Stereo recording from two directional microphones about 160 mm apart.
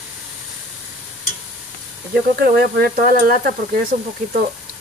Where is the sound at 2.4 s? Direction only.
65° right (ahead or behind).